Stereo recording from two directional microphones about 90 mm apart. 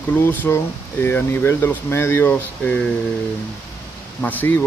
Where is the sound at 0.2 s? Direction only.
25° left (ahead or behind).